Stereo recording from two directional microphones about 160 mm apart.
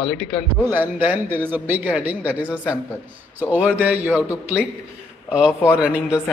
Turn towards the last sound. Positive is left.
turn(degrees=-5)  # may be behind; listen again after turning